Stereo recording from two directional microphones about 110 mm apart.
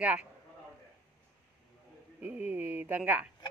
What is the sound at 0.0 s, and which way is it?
Speech, 10° right (ahead or behind).